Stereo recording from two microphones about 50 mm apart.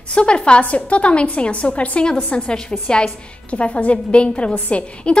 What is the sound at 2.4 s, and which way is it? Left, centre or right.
A woman's voice, centre.